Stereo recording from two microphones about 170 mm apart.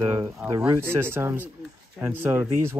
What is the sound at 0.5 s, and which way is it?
Speech, 15° right (ahead or behind).